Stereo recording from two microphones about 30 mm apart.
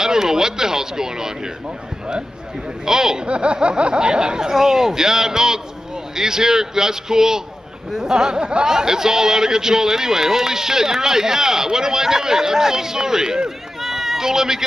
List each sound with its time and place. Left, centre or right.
0.0 s speech: centre
2.8 s speech: centre
3.3 s a sound: right
3.6 s speech: right
13.8 s run: centre